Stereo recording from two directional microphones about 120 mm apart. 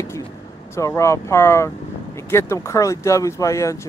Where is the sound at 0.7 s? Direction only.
25° left (ahead or behind).